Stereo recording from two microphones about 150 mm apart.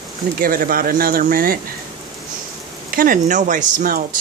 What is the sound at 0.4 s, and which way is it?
Speech, 70° right (ahead or behind).